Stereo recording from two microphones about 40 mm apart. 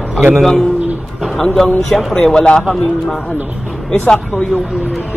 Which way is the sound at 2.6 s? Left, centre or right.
Centre.